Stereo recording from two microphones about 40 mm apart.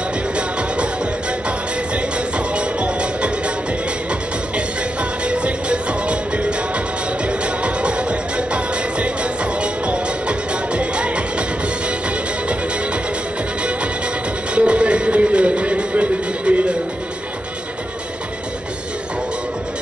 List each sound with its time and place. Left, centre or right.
0.4 s music: right
2.0 s music: right
5.2 s music: right
14.5 s music: right